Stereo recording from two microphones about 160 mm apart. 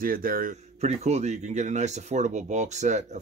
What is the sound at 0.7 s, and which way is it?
Speech, 45° right (ahead or behind).